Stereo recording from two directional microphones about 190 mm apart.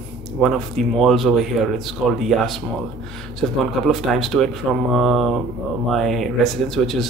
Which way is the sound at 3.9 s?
Centre (ahead or behind).